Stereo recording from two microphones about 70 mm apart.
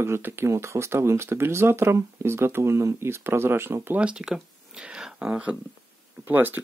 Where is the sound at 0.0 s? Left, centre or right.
Right.